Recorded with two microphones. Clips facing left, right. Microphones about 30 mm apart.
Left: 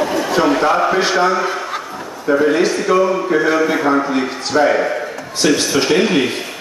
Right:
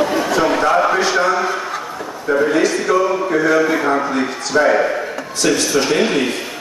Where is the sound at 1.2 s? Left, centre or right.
Left.